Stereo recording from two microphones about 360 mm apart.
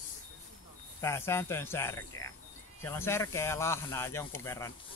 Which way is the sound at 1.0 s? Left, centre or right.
Centre.